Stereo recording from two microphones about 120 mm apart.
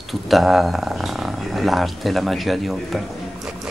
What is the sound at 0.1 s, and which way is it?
Speech, centre (ahead or behind).